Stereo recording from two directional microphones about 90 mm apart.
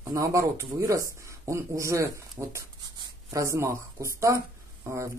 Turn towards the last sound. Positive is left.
turn(degrees=-35)  # may be behind; listen again after turning